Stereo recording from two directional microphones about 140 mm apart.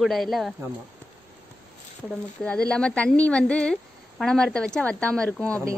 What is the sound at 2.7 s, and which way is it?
A woman's voice, 5° left (ahead or behind).